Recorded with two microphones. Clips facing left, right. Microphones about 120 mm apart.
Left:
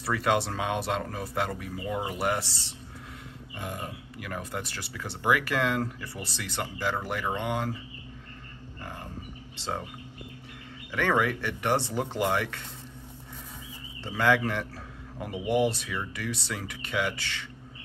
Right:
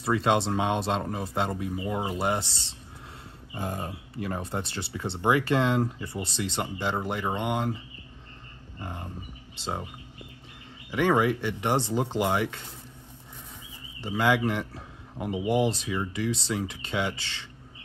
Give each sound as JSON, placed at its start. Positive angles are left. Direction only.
{"t": 0.0, "sound": "speech", "side_deg": -25}
{"t": 3.5, "sound": "speech", "side_deg": -35}
{"t": 8.8, "sound": "a sound", "side_deg": -20}
{"t": 10.9, "sound": "speech", "side_deg": -15}
{"t": 14.0, "sound": "speech", "side_deg": -15}